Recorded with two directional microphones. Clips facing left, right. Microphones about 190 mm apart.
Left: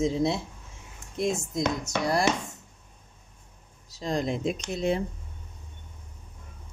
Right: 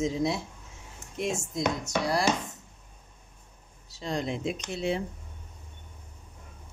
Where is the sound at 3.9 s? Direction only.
40° left (ahead or behind).